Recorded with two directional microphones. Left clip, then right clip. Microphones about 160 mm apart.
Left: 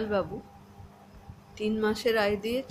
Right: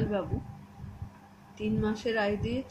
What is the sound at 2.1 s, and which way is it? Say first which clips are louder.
Speech: left 3 dB; 15° left (ahead or behind).